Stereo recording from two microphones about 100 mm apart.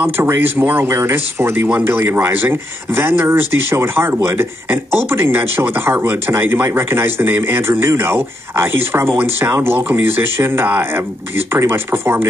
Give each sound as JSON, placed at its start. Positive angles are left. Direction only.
{"t": 0.0, "sound": "speech", "side_deg": -25}